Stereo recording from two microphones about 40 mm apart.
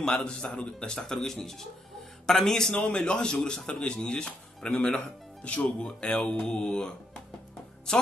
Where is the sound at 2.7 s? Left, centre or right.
Left.